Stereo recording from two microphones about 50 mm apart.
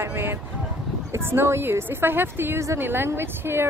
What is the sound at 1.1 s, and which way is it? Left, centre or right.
Speech, right.